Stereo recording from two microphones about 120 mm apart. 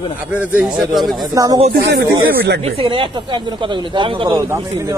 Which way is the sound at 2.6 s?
50° right (ahead or behind).